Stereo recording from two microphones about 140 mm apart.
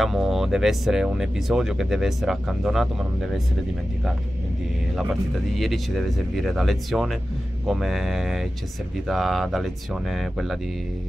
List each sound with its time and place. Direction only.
0.0 s speech: centre (ahead or behind)
5.6 s speech: centre (ahead or behind)